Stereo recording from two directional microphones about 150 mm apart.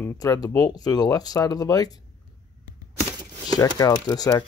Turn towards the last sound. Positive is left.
turn(degrees=25)  # may be behind; listen again after turning